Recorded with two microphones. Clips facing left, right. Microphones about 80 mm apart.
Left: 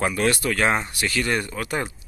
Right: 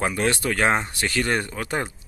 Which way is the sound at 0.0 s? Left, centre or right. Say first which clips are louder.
Left 1 dB; right.